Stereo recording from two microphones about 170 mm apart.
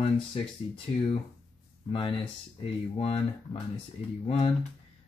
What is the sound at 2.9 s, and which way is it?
Speech, 35° left (ahead or behind).